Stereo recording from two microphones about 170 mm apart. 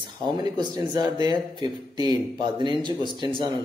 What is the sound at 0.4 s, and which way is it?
Speech, 25° right (ahead or behind).